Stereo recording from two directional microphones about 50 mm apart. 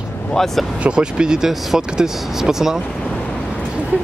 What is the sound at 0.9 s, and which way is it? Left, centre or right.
Speech, centre.